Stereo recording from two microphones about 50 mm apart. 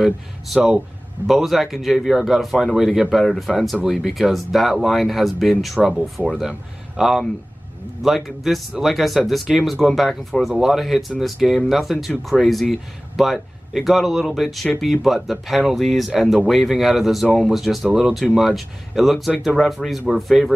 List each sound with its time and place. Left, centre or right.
1.2 s speech: centre
17.8 s speech: centre